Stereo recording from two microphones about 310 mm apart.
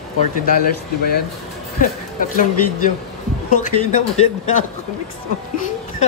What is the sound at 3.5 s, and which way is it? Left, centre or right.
A man's voice, left.